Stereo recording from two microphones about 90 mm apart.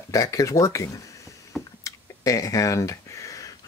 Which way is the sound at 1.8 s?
40° left (ahead or behind).